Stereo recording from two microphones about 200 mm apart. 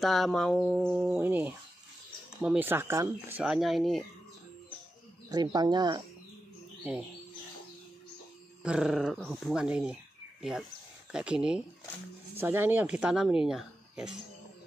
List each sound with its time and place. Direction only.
0.0 s speech: centre (ahead or behind)
5.3 s speech: 20° right (ahead or behind)
6.8 s speech: 5° right (ahead or behind)
8.6 s speech: 5° right (ahead or behind)
11.1 s speech: 5° right (ahead or behind)